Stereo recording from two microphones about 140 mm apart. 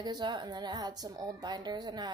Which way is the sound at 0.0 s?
30° right (ahead or behind).